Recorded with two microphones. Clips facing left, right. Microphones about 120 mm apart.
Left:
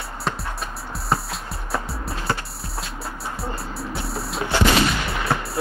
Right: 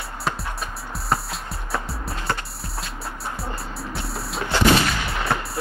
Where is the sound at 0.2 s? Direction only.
Centre (ahead or behind).